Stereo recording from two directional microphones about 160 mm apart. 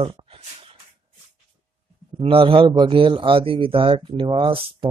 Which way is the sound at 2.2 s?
35° right (ahead or behind).